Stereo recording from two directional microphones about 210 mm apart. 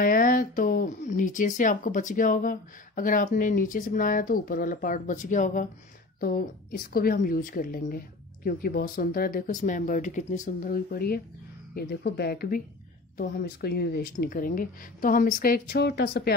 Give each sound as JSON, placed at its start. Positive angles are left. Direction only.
{"t": 0.0, "sound": "speech", "side_deg": 40}